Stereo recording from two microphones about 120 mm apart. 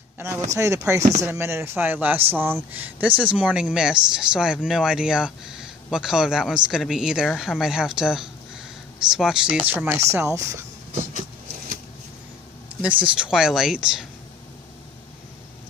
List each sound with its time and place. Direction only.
0.6 s speech: 25° right (ahead or behind)
9.9 s speech: 25° right (ahead or behind)
12.8 s speech: 10° right (ahead or behind)